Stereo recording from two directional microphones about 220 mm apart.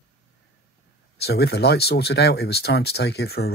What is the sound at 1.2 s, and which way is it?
Speech, 50° left (ahead or behind).